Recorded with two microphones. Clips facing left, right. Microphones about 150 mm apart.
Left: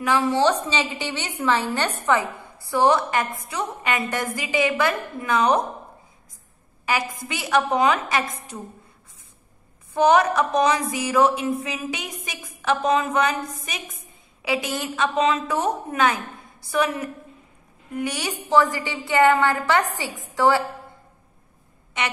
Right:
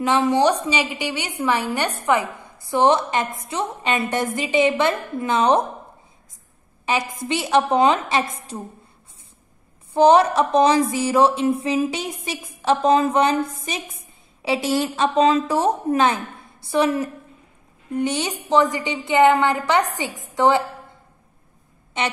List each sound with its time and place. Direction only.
0.0 s a woman's voice: 20° right (ahead or behind)
6.9 s a woman's voice: 25° right (ahead or behind)
9.9 s a woman's voice: 30° right (ahead or behind)
22.0 s a woman's voice: 30° right (ahead or behind)